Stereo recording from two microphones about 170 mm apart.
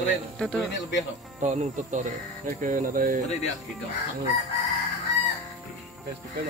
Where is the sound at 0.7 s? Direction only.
90° left.